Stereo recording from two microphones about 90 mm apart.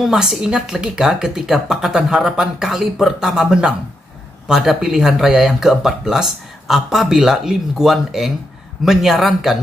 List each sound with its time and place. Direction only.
0.0 s speech: 5° right (ahead or behind)